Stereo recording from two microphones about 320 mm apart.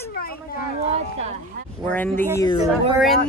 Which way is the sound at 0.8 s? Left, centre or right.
Centre.